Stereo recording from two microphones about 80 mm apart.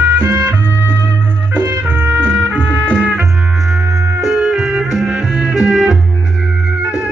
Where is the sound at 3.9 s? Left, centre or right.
Centre.